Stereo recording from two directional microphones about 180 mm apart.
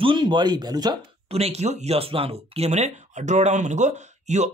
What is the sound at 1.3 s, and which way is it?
Speech, 35° right (ahead or behind).